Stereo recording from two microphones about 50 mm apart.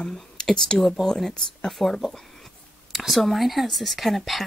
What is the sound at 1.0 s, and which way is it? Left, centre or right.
Speech, centre.